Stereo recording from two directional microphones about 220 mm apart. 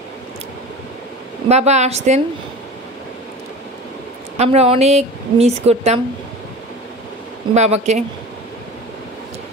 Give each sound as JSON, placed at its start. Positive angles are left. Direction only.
{"t": 1.5, "sound": "speech", "side_deg": -30}
{"t": 4.4, "sound": "speech", "side_deg": -25}
{"t": 7.5, "sound": "speech", "side_deg": -30}